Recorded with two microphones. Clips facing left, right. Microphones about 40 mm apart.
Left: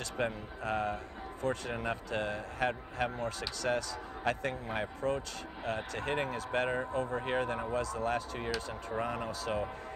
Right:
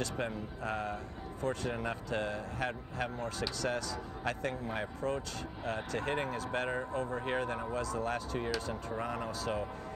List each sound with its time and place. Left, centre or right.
0.0 s speech: left